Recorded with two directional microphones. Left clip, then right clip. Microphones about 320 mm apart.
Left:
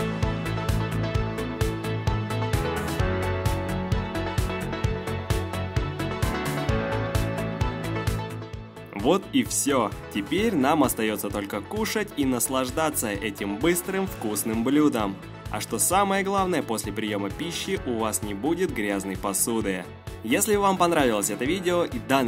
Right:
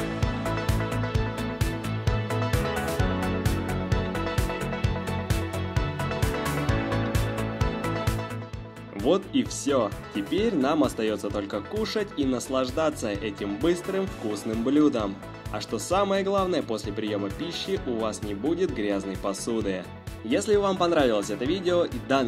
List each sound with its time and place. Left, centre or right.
1.1 s music: centre
9.0 s speech: centre